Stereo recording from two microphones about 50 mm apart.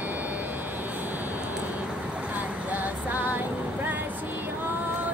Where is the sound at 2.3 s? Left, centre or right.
Right.